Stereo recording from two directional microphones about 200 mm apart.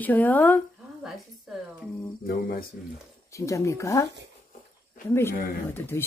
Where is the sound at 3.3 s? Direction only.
15° left (ahead or behind).